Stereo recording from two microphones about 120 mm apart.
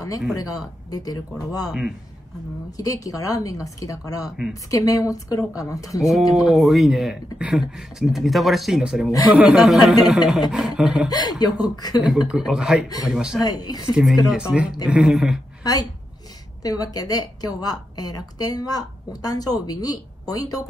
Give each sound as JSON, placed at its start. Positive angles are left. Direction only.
{"t": 0.4, "sound": "a woman's voice", "side_deg": 30}
{"t": 2.8, "sound": "a woman's voice", "side_deg": 30}
{"t": 6.0, "sound": "speech", "side_deg": 0}
{"t": 11.1, "sound": "a woman's voice", "side_deg": 35}
{"t": 12.0, "sound": "speech", "side_deg": -5}
{"t": 13.4, "sound": "a woman's voice", "side_deg": 30}
{"t": 13.9, "sound": "speech", "side_deg": -10}
{"t": 15.6, "sound": "a woman's voice", "side_deg": 30}